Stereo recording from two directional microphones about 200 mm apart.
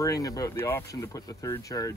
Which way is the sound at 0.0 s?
15° left (ahead or behind).